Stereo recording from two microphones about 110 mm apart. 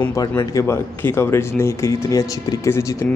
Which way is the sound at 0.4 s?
30° left (ahead or behind).